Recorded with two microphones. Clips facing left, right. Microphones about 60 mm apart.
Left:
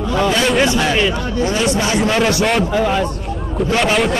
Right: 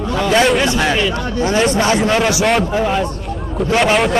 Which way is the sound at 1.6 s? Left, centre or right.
Right.